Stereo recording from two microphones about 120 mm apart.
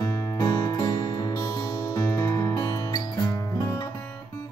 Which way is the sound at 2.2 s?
25° left (ahead or behind).